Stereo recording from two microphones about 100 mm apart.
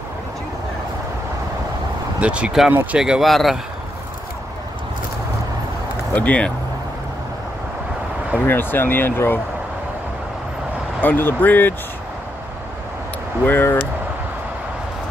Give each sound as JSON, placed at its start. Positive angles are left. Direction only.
{"t": 2.1, "sound": "speech", "side_deg": -10}
{"t": 2.7, "sound": "speech", "side_deg": -20}
{"t": 3.0, "sound": "speech", "side_deg": -5}
{"t": 6.1, "sound": "speech", "side_deg": 15}
{"t": 8.5, "sound": "speech", "side_deg": 20}
{"t": 11.0, "sound": "speech", "side_deg": 20}
{"t": 13.5, "sound": "speech", "side_deg": 20}